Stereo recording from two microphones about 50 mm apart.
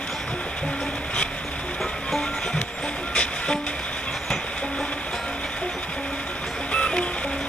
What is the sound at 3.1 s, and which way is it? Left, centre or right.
Music, left.